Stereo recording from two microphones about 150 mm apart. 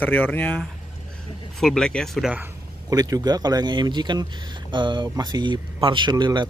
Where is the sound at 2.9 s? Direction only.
25° right (ahead or behind).